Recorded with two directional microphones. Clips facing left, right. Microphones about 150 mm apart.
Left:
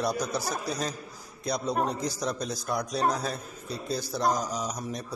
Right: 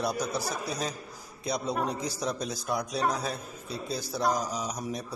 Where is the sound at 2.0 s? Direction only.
5° right (ahead or behind).